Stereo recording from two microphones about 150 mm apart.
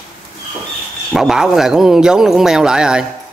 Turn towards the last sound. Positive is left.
turn(degrees=-5)  # may be behind; listen again after turning